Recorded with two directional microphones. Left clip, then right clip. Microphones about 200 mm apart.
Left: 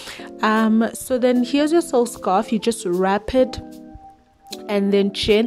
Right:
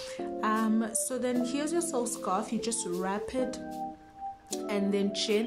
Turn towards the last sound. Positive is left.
turn(degrees=40)  # may be behind; listen again after turning